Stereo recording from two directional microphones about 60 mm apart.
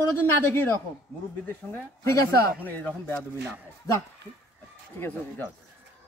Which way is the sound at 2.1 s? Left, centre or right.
Left.